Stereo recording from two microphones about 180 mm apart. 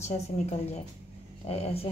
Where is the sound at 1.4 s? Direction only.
35° left (ahead or behind).